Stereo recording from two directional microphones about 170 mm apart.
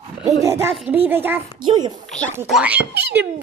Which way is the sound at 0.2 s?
15° right (ahead or behind).